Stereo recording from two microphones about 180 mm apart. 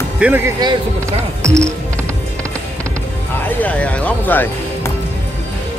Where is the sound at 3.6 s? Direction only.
10° left (ahead or behind).